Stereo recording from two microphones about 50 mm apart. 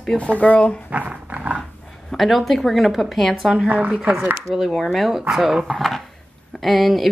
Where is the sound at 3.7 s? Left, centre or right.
Right.